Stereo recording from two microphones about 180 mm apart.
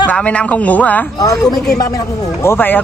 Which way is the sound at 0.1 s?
5° left (ahead or behind).